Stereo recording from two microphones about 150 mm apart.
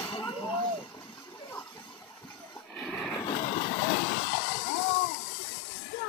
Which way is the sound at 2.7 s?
5° left (ahead or behind).